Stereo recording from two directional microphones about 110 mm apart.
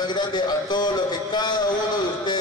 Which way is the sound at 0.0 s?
40° left (ahead or behind).